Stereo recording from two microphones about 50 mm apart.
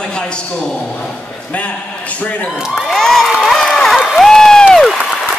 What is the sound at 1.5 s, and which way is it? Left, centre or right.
Speech, left.